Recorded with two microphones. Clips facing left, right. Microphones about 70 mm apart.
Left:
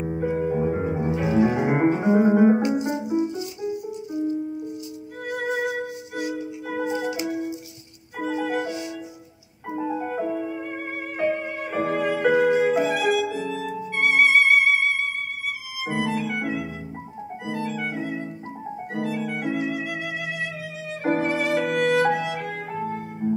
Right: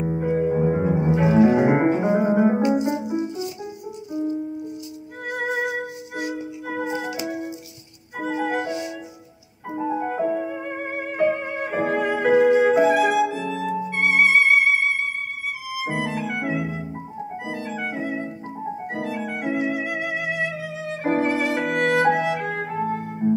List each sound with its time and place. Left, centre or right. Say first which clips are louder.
0.1 s music: right 1 dB; right
0.4 s music: right 4 dB; right
1.1 s music: right 5 dB; right
5.2 s music: right 1 dB; right
8.2 s music: right 1 dB; right
10.0 s music: right 3 dB; right
13.7 s music: right 2 dB; right